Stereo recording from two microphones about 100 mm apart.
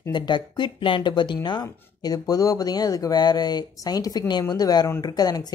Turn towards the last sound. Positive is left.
turn(degrees=40)  # may be behind; listen again after turning